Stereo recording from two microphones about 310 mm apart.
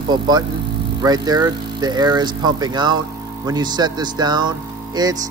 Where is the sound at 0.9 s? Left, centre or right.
Centre.